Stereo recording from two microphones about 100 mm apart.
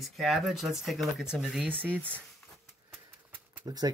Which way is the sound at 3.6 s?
40° right (ahead or behind).